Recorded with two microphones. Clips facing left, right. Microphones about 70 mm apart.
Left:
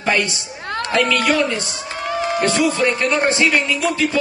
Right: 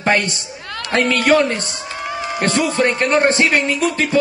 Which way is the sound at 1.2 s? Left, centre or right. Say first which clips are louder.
Right 3 dB; right.